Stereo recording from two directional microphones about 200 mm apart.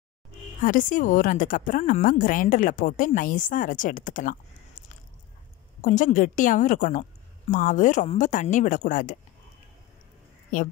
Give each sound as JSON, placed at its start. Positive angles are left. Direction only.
{"t": 0.6, "sound": "a woman's voice", "side_deg": 45}
{"t": 5.8, "sound": "a woman's voice", "side_deg": 40}